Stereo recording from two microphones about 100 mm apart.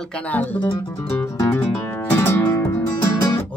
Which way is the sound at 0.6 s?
45° left (ahead or behind).